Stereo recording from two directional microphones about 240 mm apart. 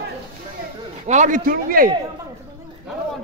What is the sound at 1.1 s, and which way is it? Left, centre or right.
Speech, right.